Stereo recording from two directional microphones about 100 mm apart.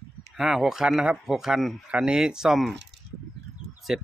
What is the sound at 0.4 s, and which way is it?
Speech, 5° right (ahead or behind).